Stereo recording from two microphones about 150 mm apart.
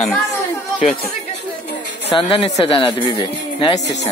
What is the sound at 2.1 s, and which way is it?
Speech, 40° left (ahead or behind).